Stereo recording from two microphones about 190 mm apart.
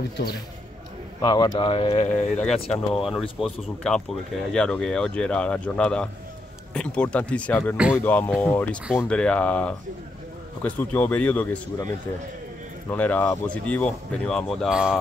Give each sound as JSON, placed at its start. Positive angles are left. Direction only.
{"t": 1.2, "sound": "speech", "side_deg": 25}
{"t": 2.7, "sound": "speech", "side_deg": 0}
{"t": 7.7, "sound": "speech", "side_deg": -5}
{"t": 8.0, "sound": "speech", "side_deg": 10}
{"t": 12.9, "sound": "speech", "side_deg": 10}